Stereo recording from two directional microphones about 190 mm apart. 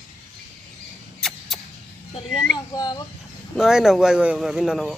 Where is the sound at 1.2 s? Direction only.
Centre (ahead or behind).